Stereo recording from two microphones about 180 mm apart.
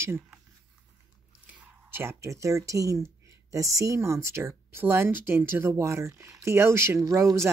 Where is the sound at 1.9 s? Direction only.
15° right (ahead or behind).